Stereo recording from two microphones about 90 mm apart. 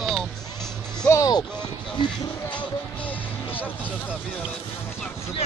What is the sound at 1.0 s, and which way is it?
Speech, 35° left (ahead or behind).